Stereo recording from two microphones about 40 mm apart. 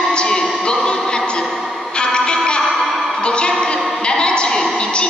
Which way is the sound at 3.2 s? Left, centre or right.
Left.